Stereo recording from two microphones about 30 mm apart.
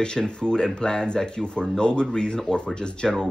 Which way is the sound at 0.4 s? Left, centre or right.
Left.